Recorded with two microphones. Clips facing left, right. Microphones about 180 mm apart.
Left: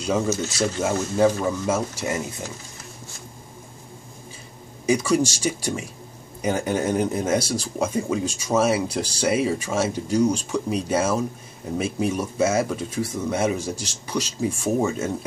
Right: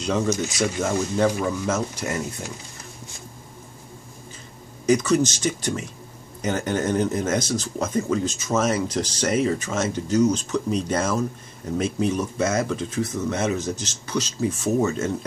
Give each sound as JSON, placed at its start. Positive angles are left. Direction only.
{"t": 0.3, "sound": "speech", "side_deg": -15}
{"t": 0.8, "sound": "speech", "side_deg": 5}
{"t": 4.8, "sound": "speech", "side_deg": 10}